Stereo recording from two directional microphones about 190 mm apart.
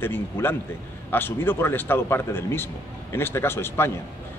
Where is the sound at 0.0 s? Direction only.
10° left (ahead or behind).